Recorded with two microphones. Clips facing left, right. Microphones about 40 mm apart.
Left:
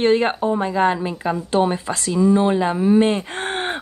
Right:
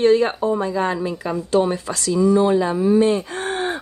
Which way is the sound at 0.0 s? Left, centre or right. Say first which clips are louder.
Right 1 dB; left.